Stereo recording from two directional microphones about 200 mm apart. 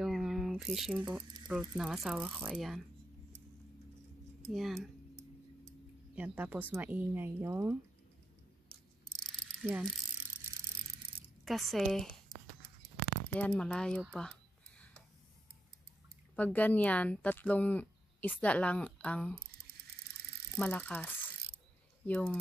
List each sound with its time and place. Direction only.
0.0 s speech: centre (ahead or behind)
4.5 s speech: centre (ahead or behind)
5.7 s a sound: 5° right (ahead or behind)
6.7 s speech: 10° right (ahead or behind)
9.6 s ratchet: centre (ahead or behind)
11.2 s speech: centre (ahead or behind)
13.3 s speech: 5° left (ahead or behind)
16.3 s a woman's voice: 10° left (ahead or behind)
20.5 s a woman's voice: 5° left (ahead or behind)